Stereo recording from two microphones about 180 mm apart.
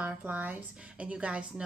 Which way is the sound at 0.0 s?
10° right (ahead or behind).